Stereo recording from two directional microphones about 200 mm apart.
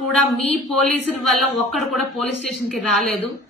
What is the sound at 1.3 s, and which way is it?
A woman's voice, centre (ahead or behind).